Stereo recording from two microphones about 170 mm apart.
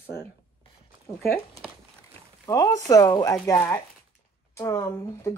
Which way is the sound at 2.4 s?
20° left (ahead or behind).